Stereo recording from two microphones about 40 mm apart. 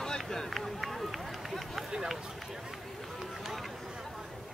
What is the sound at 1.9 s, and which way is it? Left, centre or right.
Run, centre.